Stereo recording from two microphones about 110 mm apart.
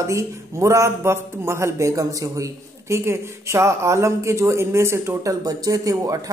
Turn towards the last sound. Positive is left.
turn(degrees=-30)  # may be behind; listen again after turning